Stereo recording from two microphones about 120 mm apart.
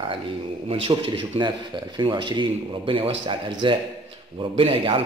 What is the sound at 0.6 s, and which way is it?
Speech, 55° right (ahead or behind).